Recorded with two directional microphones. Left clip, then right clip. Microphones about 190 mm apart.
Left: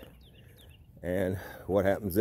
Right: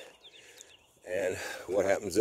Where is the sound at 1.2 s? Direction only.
20° right (ahead or behind).